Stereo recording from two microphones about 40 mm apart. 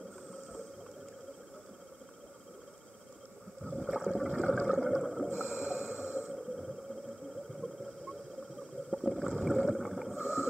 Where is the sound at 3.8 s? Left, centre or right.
Centre.